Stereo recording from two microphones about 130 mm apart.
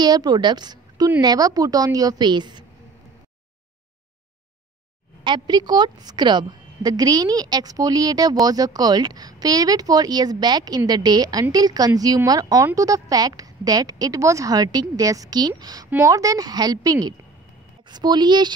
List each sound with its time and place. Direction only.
0.0 s a woman's voice: 30° right (ahead or behind)
5.2 s a woman's voice: 35° right (ahead or behind)